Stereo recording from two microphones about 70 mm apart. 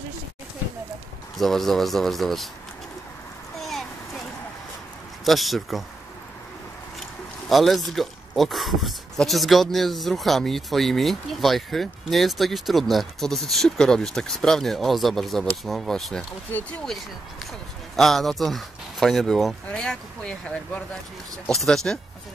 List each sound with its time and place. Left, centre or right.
1.4 s speech: centre
5.2 s speech: centre
7.4 s speech: centre
17.9 s speech: centre